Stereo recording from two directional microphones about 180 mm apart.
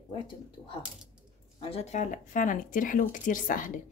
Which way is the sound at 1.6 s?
35° left (ahead or behind).